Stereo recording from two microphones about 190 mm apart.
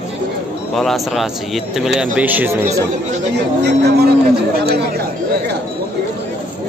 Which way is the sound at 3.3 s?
60° right (ahead or behind).